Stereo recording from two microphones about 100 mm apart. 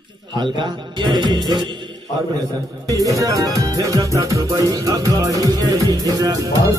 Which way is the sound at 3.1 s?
35° right (ahead or behind).